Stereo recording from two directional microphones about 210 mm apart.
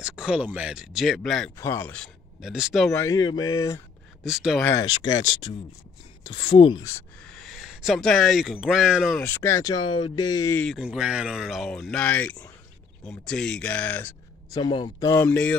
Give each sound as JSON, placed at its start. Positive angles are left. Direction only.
{"t": 0.0, "sound": "speech", "side_deg": -5}
{"t": 1.6, "sound": "speech", "side_deg": 10}
{"t": 2.9, "sound": "speech", "side_deg": 15}
{"t": 4.2, "sound": "speech", "side_deg": 0}
{"t": 4.6, "sound": "speech", "side_deg": 20}
{"t": 6.2, "sound": "speech", "side_deg": 25}
{"t": 7.0, "sound": "speech", "side_deg": 5}
{"t": 10.6, "sound": "speech", "side_deg": 0}
{"t": 14.5, "sound": "speech", "side_deg": 25}